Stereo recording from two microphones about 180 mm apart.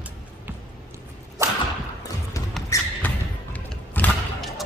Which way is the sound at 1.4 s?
15° right (ahead or behind).